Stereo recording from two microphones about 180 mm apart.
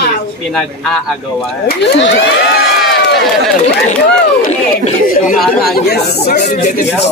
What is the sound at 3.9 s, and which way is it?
Speech, 45° left (ahead or behind).